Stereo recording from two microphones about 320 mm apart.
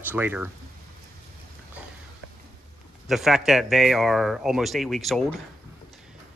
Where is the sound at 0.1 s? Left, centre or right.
Centre.